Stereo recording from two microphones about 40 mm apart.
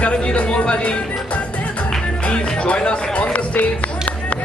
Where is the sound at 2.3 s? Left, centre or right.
Left.